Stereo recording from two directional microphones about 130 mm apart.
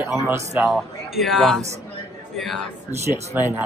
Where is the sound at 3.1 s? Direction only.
15° right (ahead or behind).